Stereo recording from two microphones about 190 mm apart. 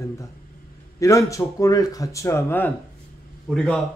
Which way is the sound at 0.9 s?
15° left (ahead or behind).